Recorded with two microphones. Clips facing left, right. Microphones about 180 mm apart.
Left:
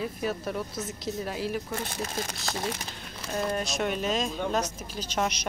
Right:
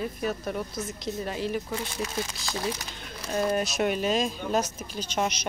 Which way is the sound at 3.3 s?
5° right (ahead or behind).